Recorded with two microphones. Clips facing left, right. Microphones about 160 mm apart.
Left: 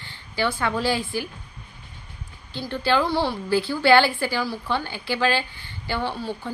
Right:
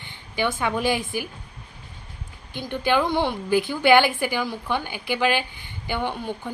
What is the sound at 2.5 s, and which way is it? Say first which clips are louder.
A woman's voice: even; 15° right (ahead or behind).